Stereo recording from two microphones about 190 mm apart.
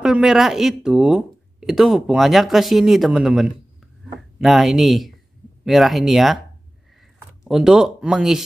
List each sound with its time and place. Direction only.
0.0 s speech: 5° right (ahead or behind)
7.4 s speech: 5° right (ahead or behind)